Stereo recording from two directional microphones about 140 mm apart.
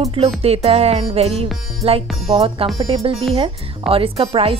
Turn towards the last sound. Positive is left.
turn(degrees=-45)  # may be behind; listen again after turning